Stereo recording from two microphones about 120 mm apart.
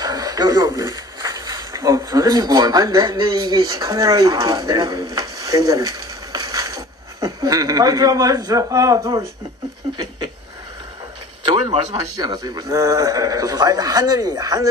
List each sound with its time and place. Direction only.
0.0 s speech: 30° right (ahead or behind)
11.4 s a man's voice: 40° right (ahead or behind)